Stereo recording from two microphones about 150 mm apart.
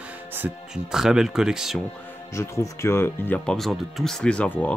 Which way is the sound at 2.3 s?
20° left (ahead or behind).